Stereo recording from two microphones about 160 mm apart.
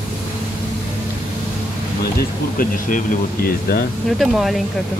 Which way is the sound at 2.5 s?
55° left (ahead or behind).